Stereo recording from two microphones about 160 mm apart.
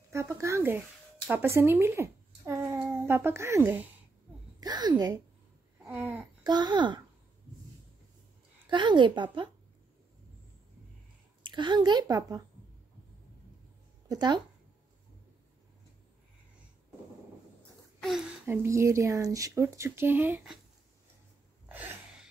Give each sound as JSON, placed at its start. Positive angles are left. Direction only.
{"t": 0.1, "sound": "speech", "side_deg": -20}
{"t": 4.6, "sound": "a woman's voice", "side_deg": -25}
{"t": 5.9, "sound": "babbling", "side_deg": -10}
{"t": 6.4, "sound": "a woman's voice", "side_deg": -25}
{"t": 8.6, "sound": "a woman's voice", "side_deg": -30}
{"t": 11.4, "sound": "a woman's voice", "side_deg": -30}
{"t": 14.0, "sound": "speech", "side_deg": -25}
{"t": 18.4, "sound": "speech", "side_deg": -15}
{"t": 21.6, "sound": "gasp", "side_deg": -10}